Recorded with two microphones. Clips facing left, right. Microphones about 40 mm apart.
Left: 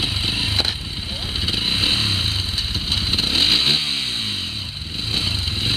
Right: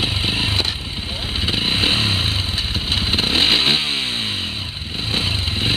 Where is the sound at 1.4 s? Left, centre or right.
Centre.